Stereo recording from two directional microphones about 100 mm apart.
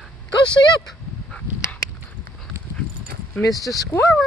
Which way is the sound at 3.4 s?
10° left (ahead or behind).